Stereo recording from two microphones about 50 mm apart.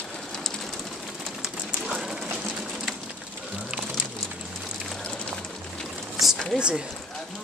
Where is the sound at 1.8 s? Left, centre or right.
Centre.